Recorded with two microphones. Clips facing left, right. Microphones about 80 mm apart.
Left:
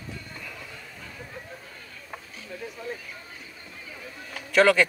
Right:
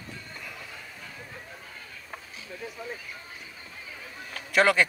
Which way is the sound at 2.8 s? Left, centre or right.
Centre.